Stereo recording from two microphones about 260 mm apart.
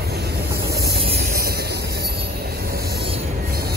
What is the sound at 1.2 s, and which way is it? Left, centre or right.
Train, right.